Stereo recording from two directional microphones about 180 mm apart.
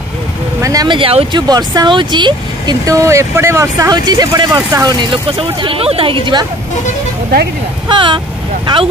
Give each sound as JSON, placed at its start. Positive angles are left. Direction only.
{"t": 0.6, "sound": "speech", "side_deg": -20}
{"t": 7.9, "sound": "speech", "side_deg": -25}